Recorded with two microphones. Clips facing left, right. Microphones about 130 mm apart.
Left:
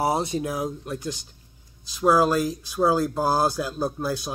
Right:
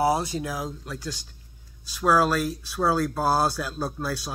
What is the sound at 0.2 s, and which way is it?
Speech, 25° left (ahead or behind).